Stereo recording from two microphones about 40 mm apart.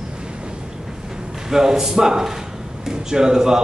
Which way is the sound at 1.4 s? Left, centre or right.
Centre.